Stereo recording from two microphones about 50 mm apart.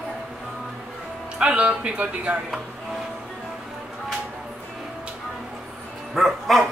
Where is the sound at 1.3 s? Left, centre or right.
Right.